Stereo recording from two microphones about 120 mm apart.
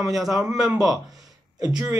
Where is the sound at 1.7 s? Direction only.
15° right (ahead or behind).